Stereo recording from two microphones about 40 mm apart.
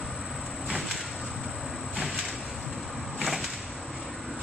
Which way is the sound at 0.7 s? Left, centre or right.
Centre.